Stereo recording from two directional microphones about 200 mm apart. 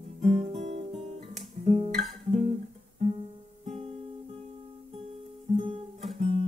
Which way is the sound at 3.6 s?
30° right (ahead or behind).